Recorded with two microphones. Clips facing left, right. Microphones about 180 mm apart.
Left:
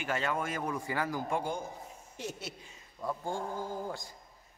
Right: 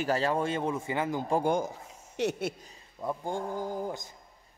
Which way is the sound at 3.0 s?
20° right (ahead or behind).